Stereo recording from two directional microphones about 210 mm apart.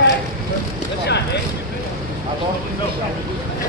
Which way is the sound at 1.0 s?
55° left (ahead or behind).